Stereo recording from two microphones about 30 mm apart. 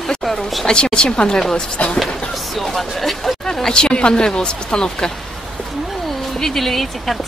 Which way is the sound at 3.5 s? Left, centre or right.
Left.